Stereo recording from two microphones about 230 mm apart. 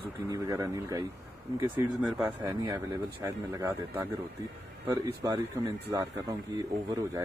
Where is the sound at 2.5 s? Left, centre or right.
Centre.